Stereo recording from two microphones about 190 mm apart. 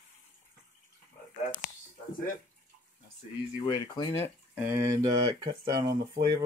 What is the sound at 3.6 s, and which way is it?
Speech, 20° left (ahead or behind).